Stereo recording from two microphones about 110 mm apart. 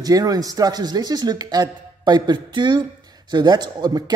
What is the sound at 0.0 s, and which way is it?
Speech, 35° right (ahead or behind).